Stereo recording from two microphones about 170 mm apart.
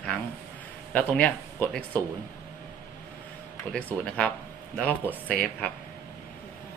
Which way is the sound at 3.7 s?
5° left (ahead or behind).